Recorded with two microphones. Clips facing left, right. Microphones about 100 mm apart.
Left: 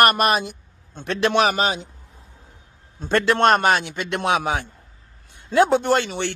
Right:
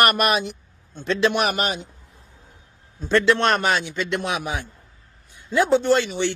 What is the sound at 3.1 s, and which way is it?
A man's voice, 50° left (ahead or behind).